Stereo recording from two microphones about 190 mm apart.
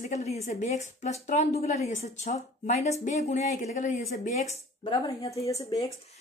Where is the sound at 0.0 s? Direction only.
35° left (ahead or behind).